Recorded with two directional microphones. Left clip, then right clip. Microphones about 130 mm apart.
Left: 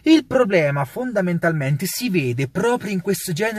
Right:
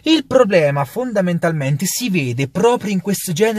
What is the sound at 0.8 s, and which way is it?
Speech, 30° right (ahead or behind).